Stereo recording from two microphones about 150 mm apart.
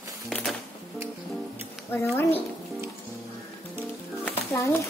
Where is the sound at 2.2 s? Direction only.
15° left (ahead or behind).